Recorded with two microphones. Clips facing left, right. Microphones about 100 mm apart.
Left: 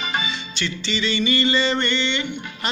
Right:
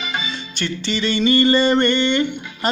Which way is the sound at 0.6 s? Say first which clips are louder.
Right 3 dB; 50° right (ahead or behind).